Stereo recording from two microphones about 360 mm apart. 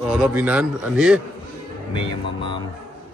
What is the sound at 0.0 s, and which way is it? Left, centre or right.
A man's voice, centre.